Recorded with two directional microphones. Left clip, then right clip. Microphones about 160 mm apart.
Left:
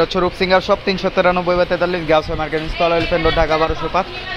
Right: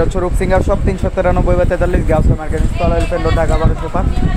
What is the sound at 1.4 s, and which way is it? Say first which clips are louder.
Speech: right 1 dB; 20° right (ahead or behind).